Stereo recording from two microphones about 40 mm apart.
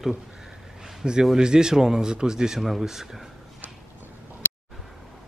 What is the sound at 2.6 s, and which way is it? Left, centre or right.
Speech, centre.